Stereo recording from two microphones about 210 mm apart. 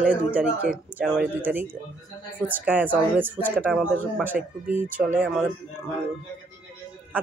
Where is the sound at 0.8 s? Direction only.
5° right (ahead or behind).